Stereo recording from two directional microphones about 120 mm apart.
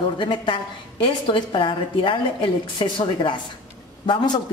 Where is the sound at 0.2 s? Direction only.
45° left (ahead or behind).